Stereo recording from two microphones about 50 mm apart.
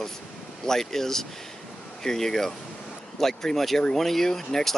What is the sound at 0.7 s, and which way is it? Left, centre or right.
Speech, centre.